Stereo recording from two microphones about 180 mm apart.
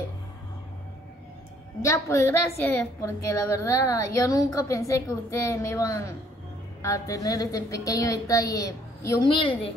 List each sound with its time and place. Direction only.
1.8 s a woman's voice: 15° left (ahead or behind)